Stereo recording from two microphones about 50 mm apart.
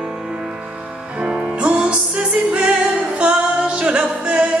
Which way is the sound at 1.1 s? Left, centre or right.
Centre.